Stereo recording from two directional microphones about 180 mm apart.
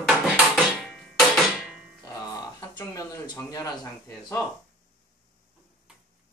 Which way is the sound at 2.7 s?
20° left (ahead or behind).